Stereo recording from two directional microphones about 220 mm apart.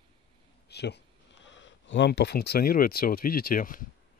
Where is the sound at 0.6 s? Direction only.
50° left (ahead or behind).